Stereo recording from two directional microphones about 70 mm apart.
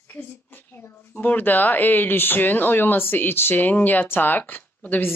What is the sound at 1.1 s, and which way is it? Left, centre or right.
A woman's voice, left.